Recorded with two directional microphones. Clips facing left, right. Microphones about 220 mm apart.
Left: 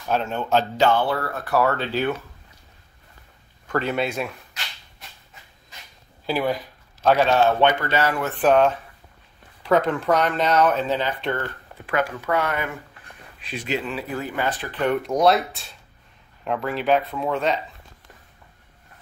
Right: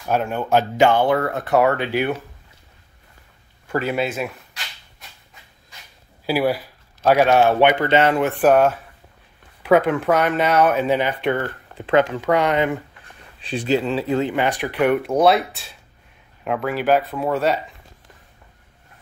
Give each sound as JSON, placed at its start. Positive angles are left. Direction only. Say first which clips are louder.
{"t": 0.1, "sound": "speech", "louder": "right 3 dB", "side_deg": -10}
{"t": 3.6, "sound": "speech", "louder": "right 2 dB", "side_deg": -10}
{"t": 6.2, "sound": "speech", "louder": "right 4 dB", "side_deg": -10}
{"t": 13.4, "sound": "speech", "louder": "right 7 dB", "side_deg": -30}